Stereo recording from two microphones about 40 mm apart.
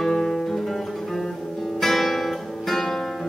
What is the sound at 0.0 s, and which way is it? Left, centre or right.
Guitar, centre.